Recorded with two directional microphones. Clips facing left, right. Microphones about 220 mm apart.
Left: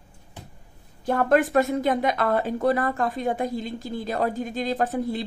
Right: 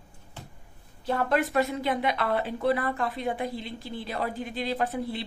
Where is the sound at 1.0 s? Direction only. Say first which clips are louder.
Left 5 dB; 50° left (ahead or behind).